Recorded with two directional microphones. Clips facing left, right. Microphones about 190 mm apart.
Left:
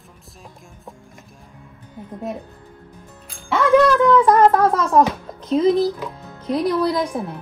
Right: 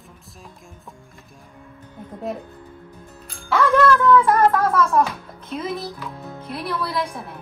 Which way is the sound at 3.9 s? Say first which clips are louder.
Left 1 dB; 15° left (ahead or behind).